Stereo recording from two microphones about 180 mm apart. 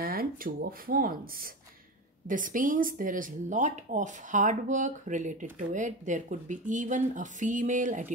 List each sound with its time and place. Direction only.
0.0 s speech: 55° right (ahead or behind)